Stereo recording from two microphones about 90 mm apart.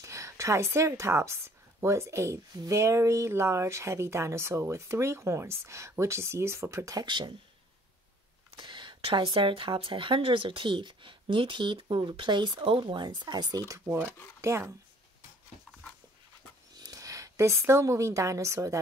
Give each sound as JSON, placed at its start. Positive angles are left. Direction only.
{"t": 0.0, "sound": "a woman's voice", "side_deg": -35}
{"t": 7.1, "sound": "speech", "side_deg": -60}
{"t": 8.5, "sound": "speech", "side_deg": -65}
{"t": 16.7, "sound": "a woman's voice", "side_deg": -45}